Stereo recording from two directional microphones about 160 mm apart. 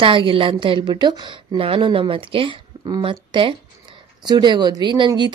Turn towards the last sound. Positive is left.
turn(degrees=-30)  # may be behind; listen again after turning